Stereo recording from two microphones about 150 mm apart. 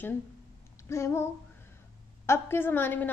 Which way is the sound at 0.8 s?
20° left (ahead or behind).